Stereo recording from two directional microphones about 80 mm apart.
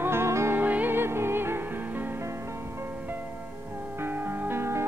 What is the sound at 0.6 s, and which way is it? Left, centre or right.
Music, right.